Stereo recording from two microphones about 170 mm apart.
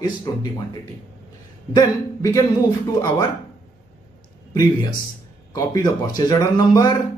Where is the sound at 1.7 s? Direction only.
20° left (ahead or behind).